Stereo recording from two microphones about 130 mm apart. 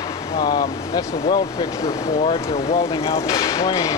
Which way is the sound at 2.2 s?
45° left (ahead or behind).